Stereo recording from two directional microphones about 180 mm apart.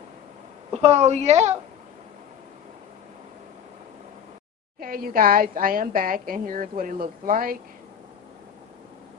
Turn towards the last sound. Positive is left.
turn(degrees=-50)  # may be behind; listen again after turning